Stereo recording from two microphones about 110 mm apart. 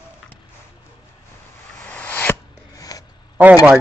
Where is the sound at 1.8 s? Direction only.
15° left (ahead or behind).